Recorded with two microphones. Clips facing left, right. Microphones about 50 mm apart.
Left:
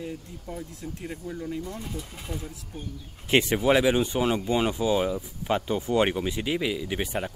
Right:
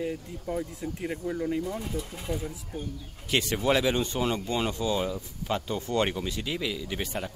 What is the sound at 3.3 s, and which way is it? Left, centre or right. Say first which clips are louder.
Speech: left 5 dB; left.